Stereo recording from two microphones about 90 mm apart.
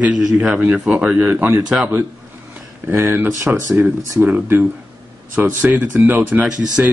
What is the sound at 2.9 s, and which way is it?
Speech, 20° right (ahead or behind).